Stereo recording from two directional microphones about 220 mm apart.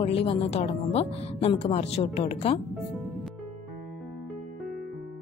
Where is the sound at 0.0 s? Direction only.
25° left (ahead or behind).